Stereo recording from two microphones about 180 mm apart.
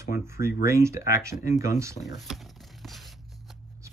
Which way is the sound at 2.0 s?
Centre (ahead or behind).